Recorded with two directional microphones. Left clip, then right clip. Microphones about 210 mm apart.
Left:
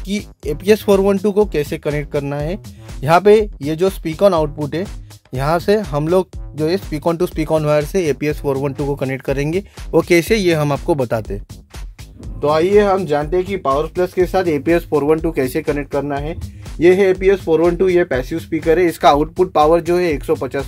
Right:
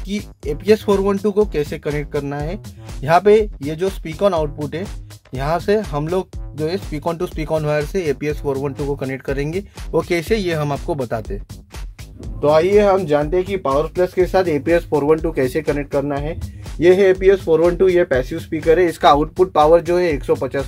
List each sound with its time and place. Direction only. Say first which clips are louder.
0.0 s speech: left 2 dB; 45° left (ahead or behind)
12.4 s speech: even; 30° left (ahead or behind)